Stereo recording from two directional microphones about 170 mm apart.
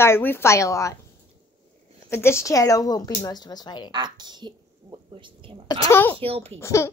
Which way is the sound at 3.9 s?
25° right (ahead or behind).